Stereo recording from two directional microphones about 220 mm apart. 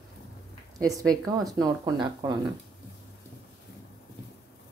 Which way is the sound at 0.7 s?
15° right (ahead or behind).